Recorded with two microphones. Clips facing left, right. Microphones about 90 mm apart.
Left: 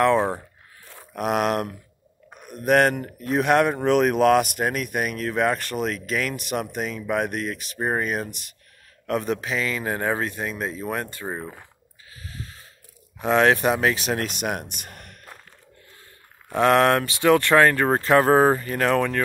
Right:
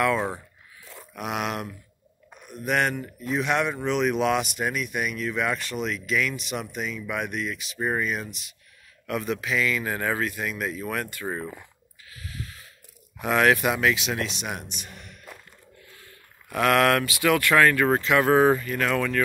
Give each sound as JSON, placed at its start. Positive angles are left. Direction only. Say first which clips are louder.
{"t": 1.1, "sound": "speech", "louder": "left 7 dB", "side_deg": 45}
{"t": 9.0, "sound": "speech", "louder": "left 3 dB", "side_deg": 40}
{"t": 12.1, "sound": "snort", "louder": "even", "side_deg": 30}
{"t": 13.2, "sound": "speech", "louder": "left 2 dB", "side_deg": 30}
{"t": 16.4, "sound": "speech", "louder": "left 3 dB", "side_deg": 30}